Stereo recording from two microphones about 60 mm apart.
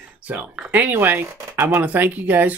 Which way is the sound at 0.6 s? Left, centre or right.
Right.